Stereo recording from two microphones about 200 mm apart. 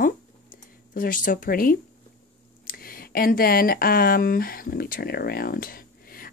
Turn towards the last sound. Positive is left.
turn(degrees=45)  # may be behind; listen again after turning